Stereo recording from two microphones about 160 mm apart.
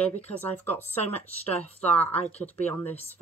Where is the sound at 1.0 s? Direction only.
40° left (ahead or behind).